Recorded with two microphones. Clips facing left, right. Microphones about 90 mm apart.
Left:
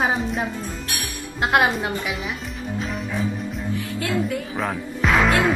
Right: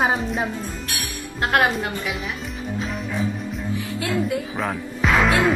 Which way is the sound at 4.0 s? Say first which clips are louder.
Right 1 dB; 10° right (ahead or behind).